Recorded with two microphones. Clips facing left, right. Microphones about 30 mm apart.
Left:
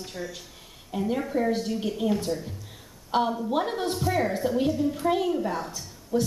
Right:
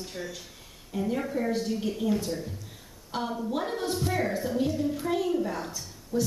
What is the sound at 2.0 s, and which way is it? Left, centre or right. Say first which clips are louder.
A woman's voice: left 3 dB; left.